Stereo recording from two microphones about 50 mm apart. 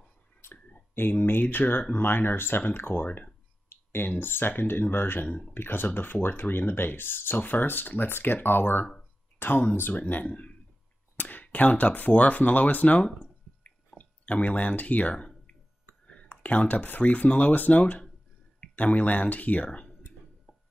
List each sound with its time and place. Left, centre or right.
0.4 s clicking: left
1.1 s speech: left